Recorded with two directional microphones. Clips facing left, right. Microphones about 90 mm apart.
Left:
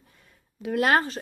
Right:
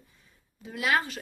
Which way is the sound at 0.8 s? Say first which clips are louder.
Left 5 dB; 40° left (ahead or behind).